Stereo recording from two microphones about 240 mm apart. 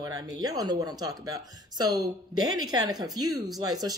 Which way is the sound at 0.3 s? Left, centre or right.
Centre.